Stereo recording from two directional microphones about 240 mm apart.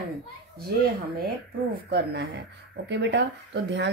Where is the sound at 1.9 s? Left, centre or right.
Right.